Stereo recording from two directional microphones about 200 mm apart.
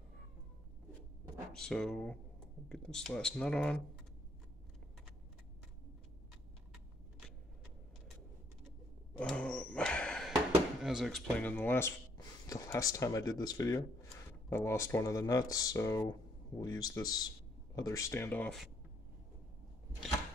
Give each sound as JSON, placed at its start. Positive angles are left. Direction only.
{"t": 1.5, "sound": "speech", "side_deg": 0}
{"t": 9.2, "sound": "a sound", "side_deg": 5}
{"t": 10.8, "sound": "speech", "side_deg": 0}